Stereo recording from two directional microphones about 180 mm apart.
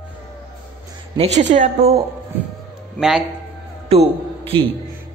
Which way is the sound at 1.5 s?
40° right (ahead or behind).